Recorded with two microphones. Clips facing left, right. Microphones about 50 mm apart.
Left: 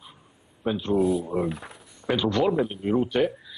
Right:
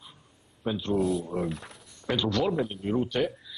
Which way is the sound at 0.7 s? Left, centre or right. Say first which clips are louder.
Left 4 dB; centre.